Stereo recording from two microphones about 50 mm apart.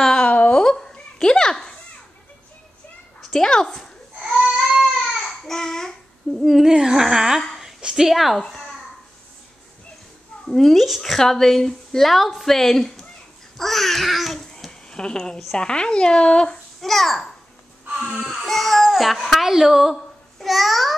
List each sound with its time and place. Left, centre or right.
0.2 s a sound: left
0.6 s a sound: centre
3.2 s speech: centre
4.4 s baby cry: centre
4.7 s babbling: centre
6.4 s speech: centre
6.7 s a sound: centre
7.5 s speech: centre
10.4 s speech: centre
14.7 s a sound: centre
15.5 s speech: centre
16.8 s speech: centre
18.4 s a child's voice: centre